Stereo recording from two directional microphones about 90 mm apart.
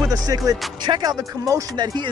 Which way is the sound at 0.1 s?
40° right (ahead or behind).